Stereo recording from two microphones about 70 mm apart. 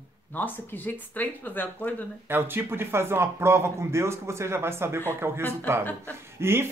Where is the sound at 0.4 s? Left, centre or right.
Left.